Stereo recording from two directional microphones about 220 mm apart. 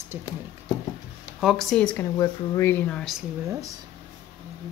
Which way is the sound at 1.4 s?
Centre (ahead or behind).